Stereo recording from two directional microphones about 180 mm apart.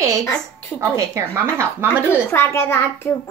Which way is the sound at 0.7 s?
20° right (ahead or behind).